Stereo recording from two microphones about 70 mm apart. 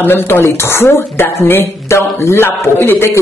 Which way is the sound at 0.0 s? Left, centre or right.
Left.